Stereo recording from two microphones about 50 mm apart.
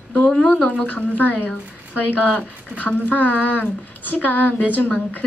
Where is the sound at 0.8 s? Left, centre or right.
Left.